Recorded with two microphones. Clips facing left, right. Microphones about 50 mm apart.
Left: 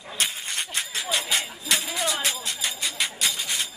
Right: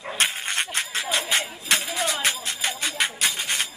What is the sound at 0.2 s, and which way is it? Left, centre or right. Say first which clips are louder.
Dog: right 4 dB; right.